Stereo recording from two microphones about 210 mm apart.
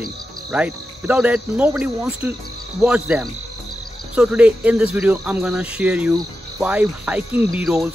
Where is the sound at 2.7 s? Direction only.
5° right (ahead or behind).